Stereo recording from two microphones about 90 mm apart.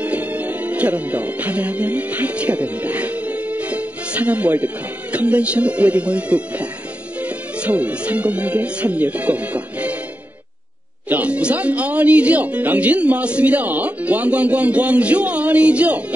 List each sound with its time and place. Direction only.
0.0 s speech: 15° right (ahead or behind)
7.2 s music: 15° right (ahead or behind)
11.1 s speech: 15° right (ahead or behind)